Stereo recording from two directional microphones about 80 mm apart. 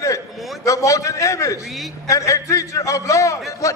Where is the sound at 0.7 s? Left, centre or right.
Left.